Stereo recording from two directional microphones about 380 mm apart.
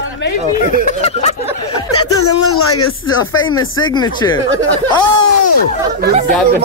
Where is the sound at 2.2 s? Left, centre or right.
Left.